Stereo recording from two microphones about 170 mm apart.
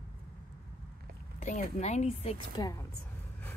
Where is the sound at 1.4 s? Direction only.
45° left (ahead or behind).